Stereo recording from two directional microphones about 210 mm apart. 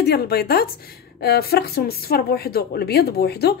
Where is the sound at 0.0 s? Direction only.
50° left (ahead or behind).